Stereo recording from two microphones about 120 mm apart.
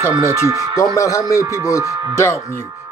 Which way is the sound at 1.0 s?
25° left (ahead or behind).